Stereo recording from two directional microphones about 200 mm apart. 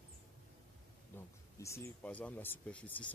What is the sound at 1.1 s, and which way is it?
Speech, 15° left (ahead or behind).